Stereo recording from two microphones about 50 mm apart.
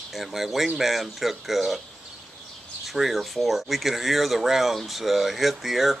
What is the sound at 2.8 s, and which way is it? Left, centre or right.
Speech, centre.